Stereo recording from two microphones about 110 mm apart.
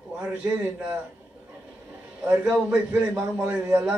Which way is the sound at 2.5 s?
10° right (ahead or behind).